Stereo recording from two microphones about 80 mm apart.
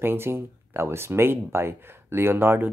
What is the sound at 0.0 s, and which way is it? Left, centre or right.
Speech, right.